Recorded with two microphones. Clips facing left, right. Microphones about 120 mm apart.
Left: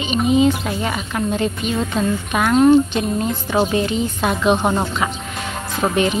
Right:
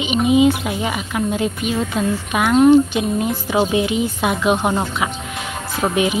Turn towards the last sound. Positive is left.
turn(degrees=-10)  # may be behind; listen again after turning